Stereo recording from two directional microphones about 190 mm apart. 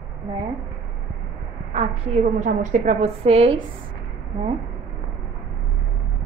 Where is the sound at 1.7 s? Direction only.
35° right (ahead or behind).